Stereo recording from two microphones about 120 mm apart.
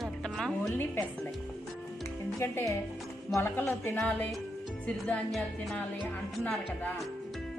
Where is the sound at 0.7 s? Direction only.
15° left (ahead or behind).